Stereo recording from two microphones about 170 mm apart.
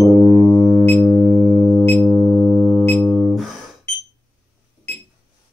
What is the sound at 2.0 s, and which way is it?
Pulse, 10° left (ahead or behind).